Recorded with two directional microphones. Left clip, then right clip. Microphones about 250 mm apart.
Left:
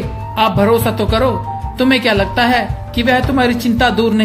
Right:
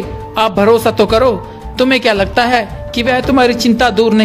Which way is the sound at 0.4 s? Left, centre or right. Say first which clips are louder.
Right 3 dB; right.